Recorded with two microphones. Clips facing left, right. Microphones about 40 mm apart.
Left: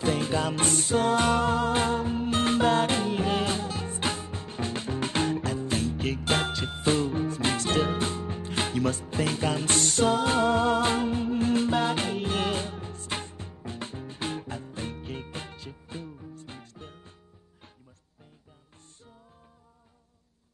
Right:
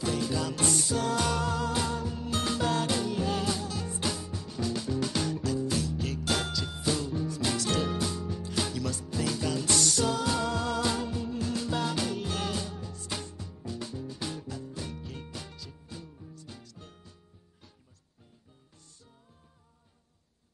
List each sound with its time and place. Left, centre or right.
0.0 s music: left